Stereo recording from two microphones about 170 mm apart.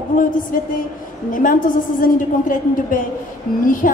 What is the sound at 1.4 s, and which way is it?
A woman's voice, 55° left (ahead or behind).